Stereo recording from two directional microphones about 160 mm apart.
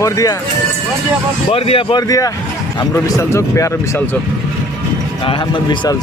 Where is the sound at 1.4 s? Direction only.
35° left (ahead or behind).